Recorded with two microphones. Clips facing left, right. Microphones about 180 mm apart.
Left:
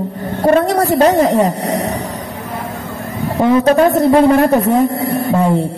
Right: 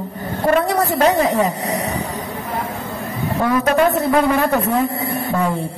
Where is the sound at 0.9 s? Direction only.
25° left (ahead or behind).